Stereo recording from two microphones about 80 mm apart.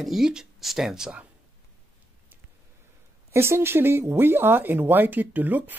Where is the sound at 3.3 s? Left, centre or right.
Right.